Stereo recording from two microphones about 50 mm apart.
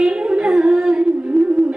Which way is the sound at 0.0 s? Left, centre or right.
Centre.